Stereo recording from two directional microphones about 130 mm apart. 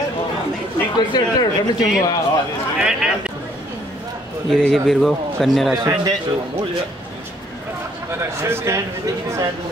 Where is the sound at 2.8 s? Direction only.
5° right (ahead or behind).